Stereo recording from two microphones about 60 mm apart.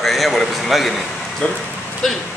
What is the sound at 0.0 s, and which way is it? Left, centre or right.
Speech, centre.